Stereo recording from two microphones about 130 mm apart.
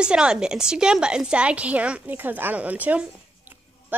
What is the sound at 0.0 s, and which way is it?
A woman's voice, 5° right (ahead or behind).